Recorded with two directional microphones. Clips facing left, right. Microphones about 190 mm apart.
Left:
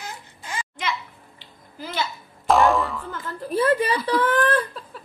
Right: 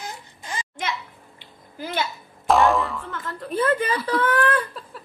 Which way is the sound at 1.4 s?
55° right (ahead or behind).